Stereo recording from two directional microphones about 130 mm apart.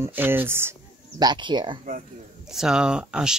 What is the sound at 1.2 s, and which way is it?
Speech, 35° right (ahead or behind).